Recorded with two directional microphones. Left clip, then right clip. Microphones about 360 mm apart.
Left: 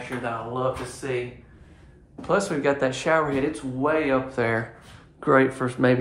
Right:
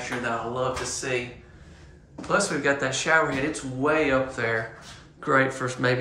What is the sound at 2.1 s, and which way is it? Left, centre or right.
Speech, centre.